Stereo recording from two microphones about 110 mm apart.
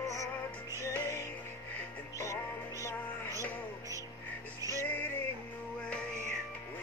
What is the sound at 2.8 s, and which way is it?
Music, 30° left (ahead or behind).